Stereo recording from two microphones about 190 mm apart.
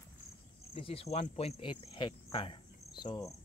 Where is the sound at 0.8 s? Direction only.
30° left (ahead or behind).